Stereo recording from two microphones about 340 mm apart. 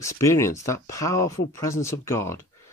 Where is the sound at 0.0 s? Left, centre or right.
Centre.